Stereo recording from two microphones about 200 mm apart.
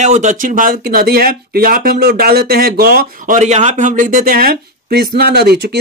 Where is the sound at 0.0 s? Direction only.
35° right (ahead or behind).